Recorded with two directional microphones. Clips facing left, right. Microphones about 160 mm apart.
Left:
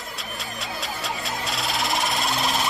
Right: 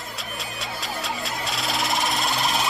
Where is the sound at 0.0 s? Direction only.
Centre (ahead or behind).